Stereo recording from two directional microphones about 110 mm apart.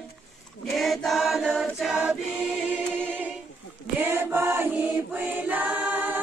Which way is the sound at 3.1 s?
15° right (ahead or behind).